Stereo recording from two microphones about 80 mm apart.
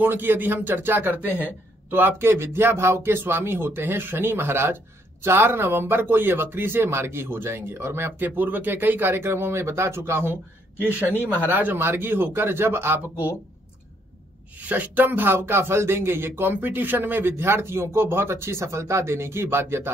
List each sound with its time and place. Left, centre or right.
0.0 s speech: right
11.4 s speech: right
13.1 s speech: left
14.6 s speech: right